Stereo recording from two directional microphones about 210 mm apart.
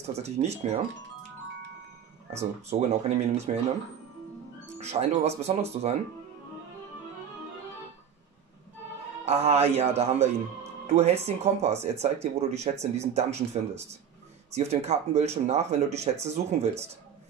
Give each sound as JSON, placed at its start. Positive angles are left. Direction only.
{"t": 0.0, "sound": "speech", "side_deg": -30}
{"t": 2.3, "sound": "speech", "side_deg": -30}
{"t": 4.7, "sound": "speech", "side_deg": -30}
{"t": 9.2, "sound": "speech", "side_deg": -30}
{"t": 14.5, "sound": "speech", "side_deg": -30}